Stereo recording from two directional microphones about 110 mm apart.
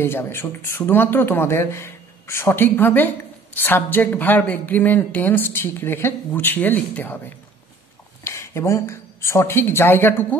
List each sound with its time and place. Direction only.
0.0 s a woman's voice: 20° left (ahead or behind)
8.2 s speech: 25° left (ahead or behind)